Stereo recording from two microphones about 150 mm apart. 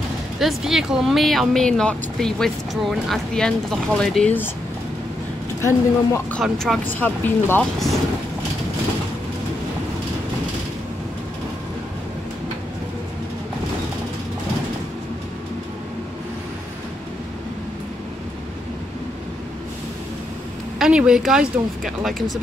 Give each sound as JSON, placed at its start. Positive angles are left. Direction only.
{"t": 0.4, "sound": "speech", "side_deg": 0}
{"t": 5.6, "sound": "speech", "side_deg": 20}
{"t": 6.4, "sound": "speech", "side_deg": 0}
{"t": 6.9, "sound": "speech", "side_deg": 10}
{"t": 20.8, "sound": "speech", "side_deg": -5}